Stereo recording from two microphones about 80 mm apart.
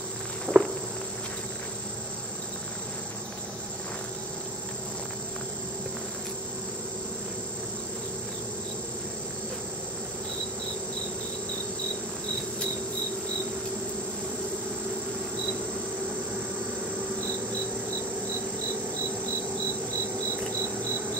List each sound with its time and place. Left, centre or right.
0.5 s walk: right